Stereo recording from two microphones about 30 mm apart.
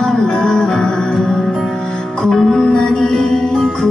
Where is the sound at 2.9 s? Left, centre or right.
Left.